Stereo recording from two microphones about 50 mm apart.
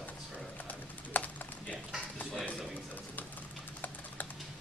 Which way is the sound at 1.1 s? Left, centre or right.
Left.